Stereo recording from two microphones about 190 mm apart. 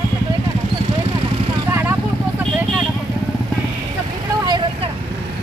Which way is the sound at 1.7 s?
10° right (ahead or behind).